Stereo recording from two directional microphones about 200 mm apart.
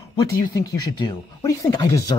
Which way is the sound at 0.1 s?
20° left (ahead or behind).